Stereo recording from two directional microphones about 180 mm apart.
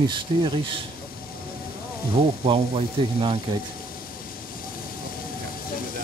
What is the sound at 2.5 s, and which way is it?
Speech, 30° right (ahead or behind).